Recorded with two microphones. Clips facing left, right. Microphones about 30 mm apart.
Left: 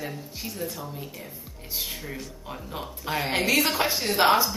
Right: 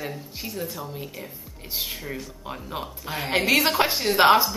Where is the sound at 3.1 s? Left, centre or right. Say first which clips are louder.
Left 4 dB; centre.